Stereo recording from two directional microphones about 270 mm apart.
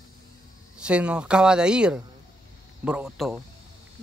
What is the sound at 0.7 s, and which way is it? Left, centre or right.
Speech, centre.